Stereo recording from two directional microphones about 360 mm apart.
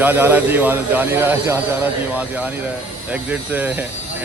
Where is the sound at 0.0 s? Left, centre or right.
Centre.